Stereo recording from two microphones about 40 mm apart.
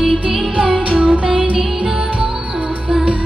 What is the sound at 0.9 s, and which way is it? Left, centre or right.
Music, right.